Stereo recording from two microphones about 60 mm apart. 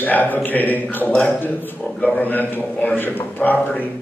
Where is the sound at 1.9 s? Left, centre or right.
Left.